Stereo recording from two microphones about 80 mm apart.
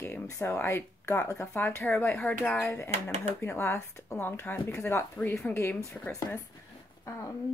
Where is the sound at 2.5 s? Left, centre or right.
Left.